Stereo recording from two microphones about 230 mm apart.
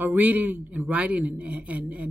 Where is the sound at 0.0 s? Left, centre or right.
Centre.